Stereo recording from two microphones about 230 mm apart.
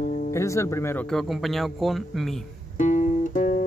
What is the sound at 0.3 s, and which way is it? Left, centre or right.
Speech, centre.